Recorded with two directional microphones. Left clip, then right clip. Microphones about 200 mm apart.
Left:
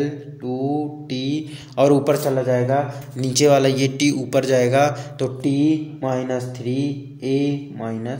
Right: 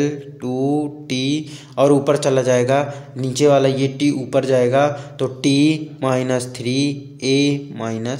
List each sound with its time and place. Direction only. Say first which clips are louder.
0.0 s mantra: right 4 dB; 20° right (ahead or behind)
1.8 s a man's voice: right 1 dB; 5° right (ahead or behind)
2.2 s a man's voice: right 4 dB; 30° right (ahead or behind)
3.2 s a man's voice: right 1 dB; 5° right (ahead or behind)
5.5 s mantra: right 3 dB; 20° right (ahead or behind)